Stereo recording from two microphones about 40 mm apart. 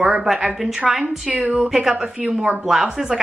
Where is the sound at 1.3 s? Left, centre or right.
Right.